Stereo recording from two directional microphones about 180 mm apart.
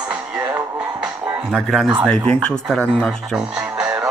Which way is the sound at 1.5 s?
Centre (ahead or behind).